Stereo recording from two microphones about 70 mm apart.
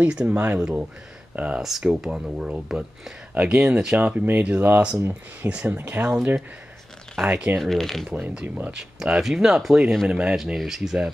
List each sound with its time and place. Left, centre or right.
0.2 s speech: centre
1.6 s speech: centre
4.0 s speech: right
7.2 s speech: right
7.5 s speech: centre
8.1 s speech: right; by 11.0 s centre